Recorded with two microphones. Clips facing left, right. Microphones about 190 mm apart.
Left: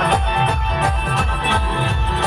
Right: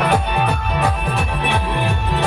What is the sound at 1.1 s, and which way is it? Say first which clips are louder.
Music: right 1 dB; 15° right (ahead or behind).